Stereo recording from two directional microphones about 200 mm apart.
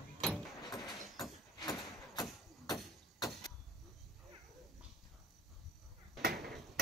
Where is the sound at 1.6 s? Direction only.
20° left (ahead or behind).